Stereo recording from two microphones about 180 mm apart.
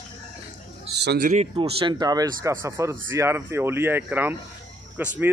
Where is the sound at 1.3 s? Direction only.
35° right (ahead or behind).